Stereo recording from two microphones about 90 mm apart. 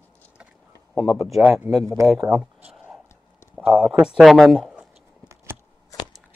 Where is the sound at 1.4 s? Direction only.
15° right (ahead or behind).